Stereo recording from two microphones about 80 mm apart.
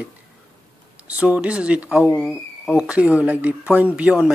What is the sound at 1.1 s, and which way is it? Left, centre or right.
Speech, centre.